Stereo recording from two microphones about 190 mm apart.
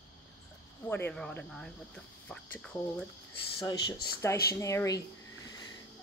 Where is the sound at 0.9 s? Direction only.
10° left (ahead or behind).